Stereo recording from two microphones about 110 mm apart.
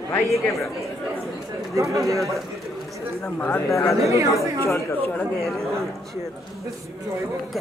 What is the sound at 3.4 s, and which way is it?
Speech, 25° left (ahead or behind).